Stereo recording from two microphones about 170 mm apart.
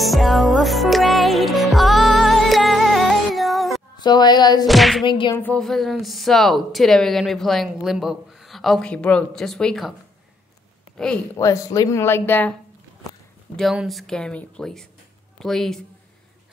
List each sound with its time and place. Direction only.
0.0 s music: centre (ahead or behind)
3.9 s a sound: 25° left (ahead or behind)
4.6 s speech: centre (ahead or behind)
5.0 s speech: 30° left (ahead or behind)
5.3 s speech: 10° left (ahead or behind)
11.3 s speech: 20° left (ahead or behind)
13.6 s speech: centre (ahead or behind)